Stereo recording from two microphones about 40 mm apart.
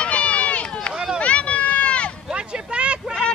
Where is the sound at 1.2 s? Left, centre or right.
Left.